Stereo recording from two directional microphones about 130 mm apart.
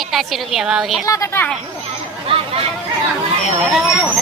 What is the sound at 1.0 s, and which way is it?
Speech, 25° left (ahead or behind).